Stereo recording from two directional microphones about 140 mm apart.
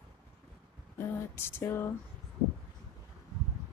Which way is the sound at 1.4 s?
15° left (ahead or behind).